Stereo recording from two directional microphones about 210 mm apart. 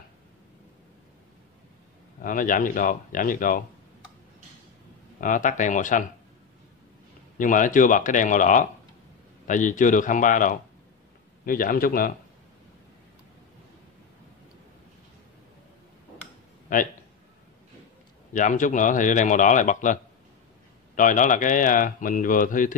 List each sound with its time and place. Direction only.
2.2 s speech: 40° left (ahead or behind)
5.2 s speech: 40° left (ahead or behind)
7.3 s a man's voice: 40° left (ahead or behind)
18.3 s speech: 40° left (ahead or behind)